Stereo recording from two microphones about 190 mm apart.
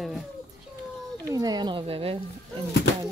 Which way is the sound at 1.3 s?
20° right (ahead or behind).